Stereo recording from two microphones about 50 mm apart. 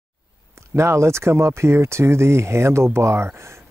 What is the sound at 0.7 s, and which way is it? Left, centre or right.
Speech, right.